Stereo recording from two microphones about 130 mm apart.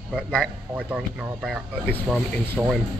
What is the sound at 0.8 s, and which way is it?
Speech, 10° right (ahead or behind).